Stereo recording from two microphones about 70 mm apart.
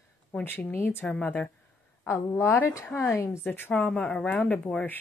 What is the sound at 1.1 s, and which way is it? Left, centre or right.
Speech, left.